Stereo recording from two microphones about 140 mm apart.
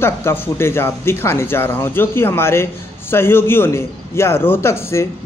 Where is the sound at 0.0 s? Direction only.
15° left (ahead or behind).